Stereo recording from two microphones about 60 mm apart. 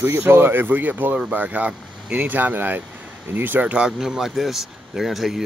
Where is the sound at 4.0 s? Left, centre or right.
Centre.